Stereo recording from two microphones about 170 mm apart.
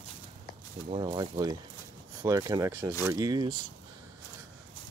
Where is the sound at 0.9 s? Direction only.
30° right (ahead or behind).